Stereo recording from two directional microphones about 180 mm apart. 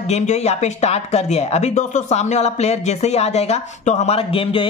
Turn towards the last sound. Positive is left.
turn(degrees=30)  # may be behind; listen again after turning